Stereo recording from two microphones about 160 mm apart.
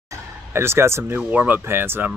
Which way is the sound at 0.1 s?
15° right (ahead or behind).